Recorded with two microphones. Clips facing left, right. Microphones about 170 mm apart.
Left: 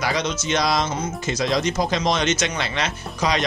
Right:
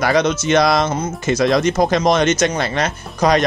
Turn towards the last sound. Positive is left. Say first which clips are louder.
# right 7 dB
turn(degrees=-50)  # may be behind; listen again after turning